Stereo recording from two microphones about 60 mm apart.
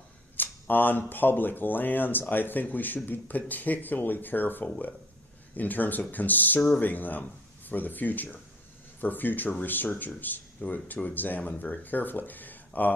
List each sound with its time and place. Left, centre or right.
0.4 s speech: left